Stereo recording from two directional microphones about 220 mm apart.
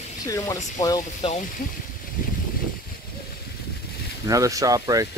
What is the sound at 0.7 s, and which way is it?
Speech, 15° left (ahead or behind).